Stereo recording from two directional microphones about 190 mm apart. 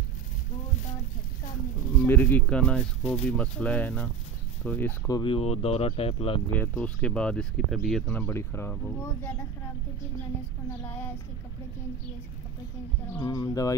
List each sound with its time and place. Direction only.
2.0 s speech: 10° left (ahead or behind)
5.0 s speech: 25° left (ahead or behind)
6.5 s speech: 10° left (ahead or behind)
13.2 s speech: 20° left (ahead or behind)